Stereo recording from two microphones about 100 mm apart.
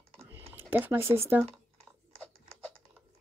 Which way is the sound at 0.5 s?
20° right (ahead or behind).